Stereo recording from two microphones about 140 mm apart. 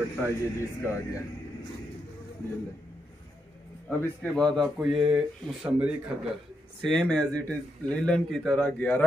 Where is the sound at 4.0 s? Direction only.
10° left (ahead or behind).